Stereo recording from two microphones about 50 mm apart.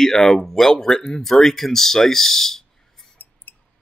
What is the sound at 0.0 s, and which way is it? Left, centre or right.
Speech, centre.